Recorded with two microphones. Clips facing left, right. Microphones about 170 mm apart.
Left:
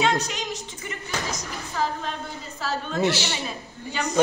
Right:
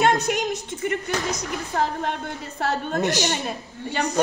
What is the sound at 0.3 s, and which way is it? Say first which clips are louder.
Speech: right 8 dB; 60° right (ahead or behind).